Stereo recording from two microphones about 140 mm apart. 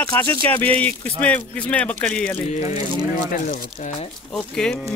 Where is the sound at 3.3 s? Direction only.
70° left (ahead or behind).